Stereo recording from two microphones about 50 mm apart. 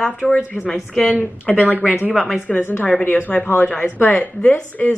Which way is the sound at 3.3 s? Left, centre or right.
Left.